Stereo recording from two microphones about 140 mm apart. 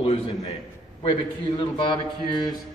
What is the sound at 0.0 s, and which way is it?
Speech, 45° left (ahead or behind).